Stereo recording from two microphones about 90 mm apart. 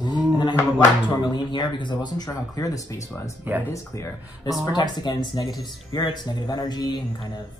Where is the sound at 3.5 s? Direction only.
20° right (ahead or behind).